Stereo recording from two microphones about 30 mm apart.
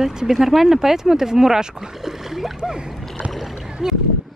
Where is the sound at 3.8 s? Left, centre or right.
Right.